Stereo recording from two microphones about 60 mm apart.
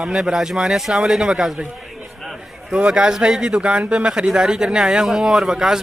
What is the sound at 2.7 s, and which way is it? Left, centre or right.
Speech, centre.